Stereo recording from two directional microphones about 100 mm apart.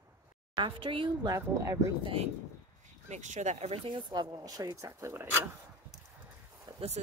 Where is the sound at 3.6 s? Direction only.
90° right.